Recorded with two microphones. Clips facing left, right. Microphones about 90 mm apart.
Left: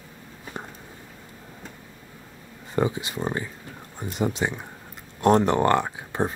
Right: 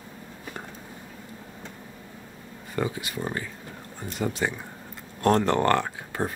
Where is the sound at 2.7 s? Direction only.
20° left (ahead or behind).